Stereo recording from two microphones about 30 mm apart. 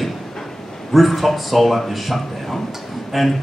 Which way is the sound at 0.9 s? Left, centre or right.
Centre.